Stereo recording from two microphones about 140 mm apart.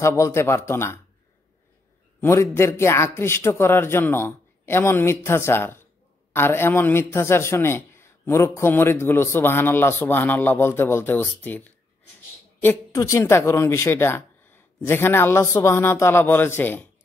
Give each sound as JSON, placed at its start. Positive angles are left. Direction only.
{"t": 0.0, "sound": "a man's voice", "side_deg": 20}
{"t": 2.2, "sound": "a man's voice", "side_deg": 20}
{"t": 12.9, "sound": "a man's voice", "side_deg": 20}